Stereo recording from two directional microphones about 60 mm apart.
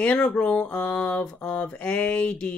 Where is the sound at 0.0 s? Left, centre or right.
Centre.